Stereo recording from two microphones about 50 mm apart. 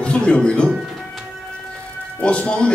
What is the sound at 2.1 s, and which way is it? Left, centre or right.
Speech, left.